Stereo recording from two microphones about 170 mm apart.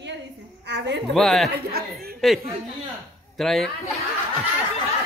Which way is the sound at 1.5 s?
65° right (ahead or behind).